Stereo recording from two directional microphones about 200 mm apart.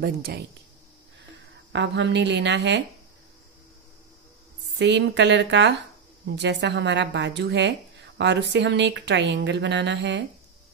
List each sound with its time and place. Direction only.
0.0 s speech: 50° right (ahead or behind)
1.7 s speech: 60° right (ahead or behind)
4.7 s speech: 60° right (ahead or behind)